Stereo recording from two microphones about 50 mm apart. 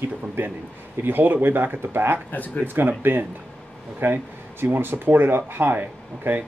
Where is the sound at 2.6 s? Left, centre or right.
Right.